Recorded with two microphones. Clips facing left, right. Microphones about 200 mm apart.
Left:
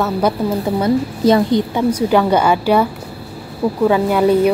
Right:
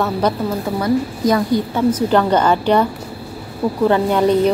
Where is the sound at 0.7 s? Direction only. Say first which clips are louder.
Left 2 dB; 25° left (ahead or behind).